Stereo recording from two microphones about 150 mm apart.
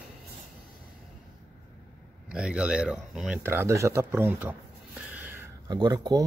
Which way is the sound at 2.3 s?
5° right (ahead or behind).